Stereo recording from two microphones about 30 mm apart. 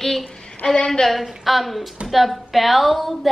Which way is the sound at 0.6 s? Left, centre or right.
Left.